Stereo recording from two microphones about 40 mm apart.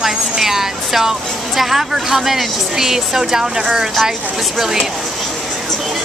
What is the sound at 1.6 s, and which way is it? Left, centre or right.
Speech, centre.